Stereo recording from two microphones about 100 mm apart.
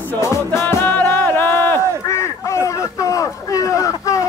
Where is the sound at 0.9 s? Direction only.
20° left (ahead or behind).